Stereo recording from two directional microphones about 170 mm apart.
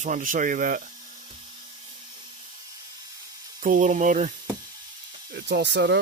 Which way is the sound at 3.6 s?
50° right (ahead or behind).